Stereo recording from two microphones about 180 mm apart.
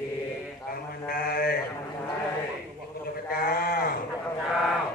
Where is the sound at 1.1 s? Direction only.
55° left (ahead or behind).